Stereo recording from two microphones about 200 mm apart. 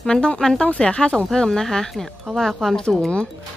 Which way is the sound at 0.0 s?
5° left (ahead or behind).